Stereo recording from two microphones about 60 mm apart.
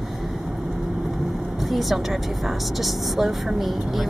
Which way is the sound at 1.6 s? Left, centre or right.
Centre.